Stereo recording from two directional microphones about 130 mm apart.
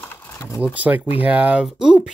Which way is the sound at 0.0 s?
15° left (ahead or behind).